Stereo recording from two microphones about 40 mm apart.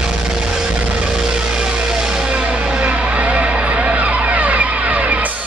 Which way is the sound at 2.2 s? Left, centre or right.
Right.